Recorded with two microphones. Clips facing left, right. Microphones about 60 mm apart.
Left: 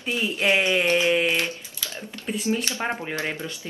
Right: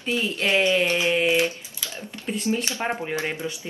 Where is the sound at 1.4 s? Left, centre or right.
Right.